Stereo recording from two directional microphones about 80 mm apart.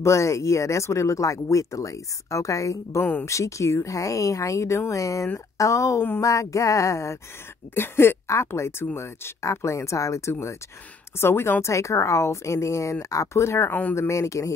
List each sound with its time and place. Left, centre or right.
0.0 s speech: left
13.9 s speech: left